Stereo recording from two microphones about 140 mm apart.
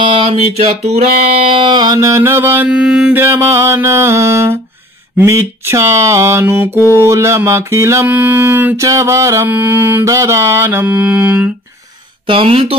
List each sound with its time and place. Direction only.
0.0 s a sound: 40° right (ahead or behind)
0.8 s mantra: 45° right (ahead or behind); by 6.8 s 15° right (ahead or behind)
6.9 s music: 20° right (ahead or behind)
12.3 s speech: 40° right (ahead or behind)